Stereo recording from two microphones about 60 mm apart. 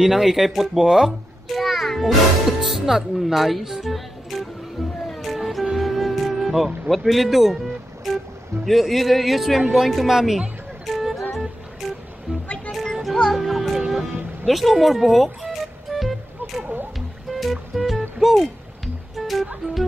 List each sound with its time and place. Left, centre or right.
0.0 s a man's voice: centre
5.0 s music: centre
6.9 s a man's voice: centre
10.9 s music: centre
12.3 s music: centre
12.7 s music: centre